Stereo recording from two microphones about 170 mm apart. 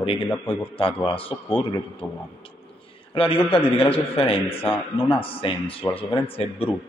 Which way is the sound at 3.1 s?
30° left (ahead or behind).